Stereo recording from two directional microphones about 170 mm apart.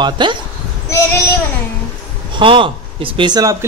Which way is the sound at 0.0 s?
25° right (ahead or behind).